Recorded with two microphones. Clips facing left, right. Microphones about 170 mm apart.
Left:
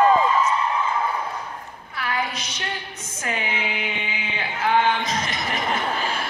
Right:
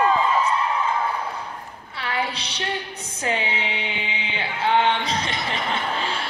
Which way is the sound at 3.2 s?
30° right (ahead or behind).